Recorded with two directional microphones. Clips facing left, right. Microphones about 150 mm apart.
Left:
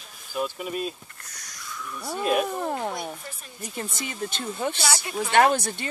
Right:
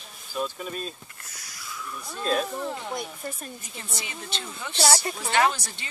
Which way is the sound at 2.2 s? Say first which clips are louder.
Left 2 dB; 15° left (ahead or behind).